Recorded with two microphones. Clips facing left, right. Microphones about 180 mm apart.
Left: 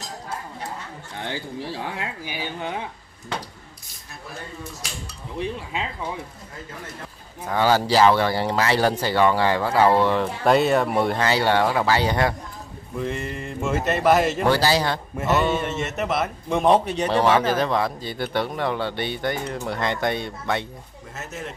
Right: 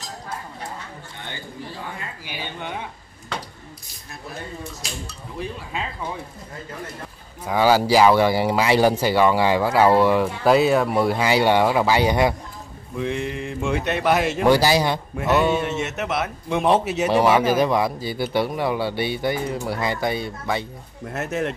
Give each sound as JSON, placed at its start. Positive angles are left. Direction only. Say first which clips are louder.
{"t": 1.2, "sound": "speech", "louder": "left 6 dB", "side_deg": 85}
{"t": 7.4, "sound": "a man's voice", "louder": "right 2 dB", "side_deg": -10}
{"t": 12.9, "sound": "speech", "louder": "right 2 dB", "side_deg": 0}
{"t": 14.5, "sound": "a man's voice", "louder": "right 6 dB", "side_deg": -15}
{"t": 15.1, "sound": "a man's voice", "louder": "right 2 dB", "side_deg": 0}
{"t": 21.1, "sound": "a man's voice", "louder": "right 9 dB", "side_deg": -65}